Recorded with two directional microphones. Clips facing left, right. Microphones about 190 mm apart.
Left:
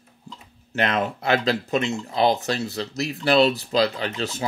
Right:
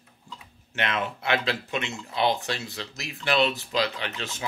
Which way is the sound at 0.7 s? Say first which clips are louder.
Left 6 dB; 40° left (ahead or behind).